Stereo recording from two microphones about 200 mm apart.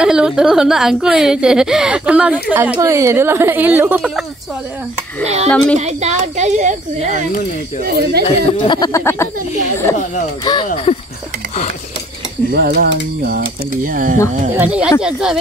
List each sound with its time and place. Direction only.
0.0 s a woman's voice: 5° right (ahead or behind)
5.2 s speech: 35° right (ahead or behind)
7.8 s mechanisms: 50° right (ahead or behind)
8.3 s speech: 25° left (ahead or behind)
12.4 s mechanisms: 55° right (ahead or behind)
14.8 s speech: 5° right (ahead or behind)